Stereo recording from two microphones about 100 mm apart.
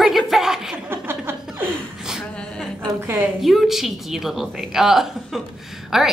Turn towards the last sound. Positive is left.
turn(degrees=0)  # may be behind; listen again after turning